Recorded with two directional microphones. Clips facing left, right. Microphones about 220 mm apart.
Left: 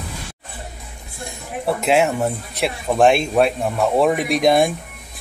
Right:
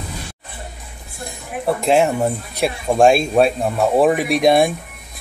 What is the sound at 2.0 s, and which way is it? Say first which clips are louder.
Speech: right 2 dB; 15° right (ahead or behind).